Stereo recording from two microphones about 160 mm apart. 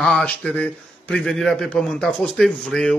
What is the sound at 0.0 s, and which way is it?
Speech, 5° left (ahead or behind).